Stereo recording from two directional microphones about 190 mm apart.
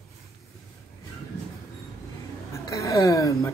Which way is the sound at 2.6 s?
15° left (ahead or behind).